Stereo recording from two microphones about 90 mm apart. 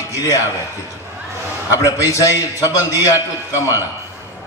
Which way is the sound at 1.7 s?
35° left (ahead or behind).